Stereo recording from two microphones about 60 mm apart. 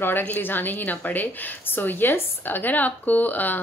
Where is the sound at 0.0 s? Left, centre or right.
Left.